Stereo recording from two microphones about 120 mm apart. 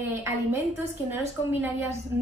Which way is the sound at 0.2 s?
20° right (ahead or behind).